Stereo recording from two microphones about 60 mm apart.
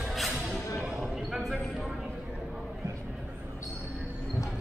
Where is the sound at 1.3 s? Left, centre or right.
Centre.